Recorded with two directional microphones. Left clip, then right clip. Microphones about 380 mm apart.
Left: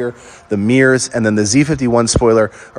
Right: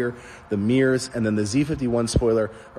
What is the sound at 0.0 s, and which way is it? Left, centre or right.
A man's voice, centre.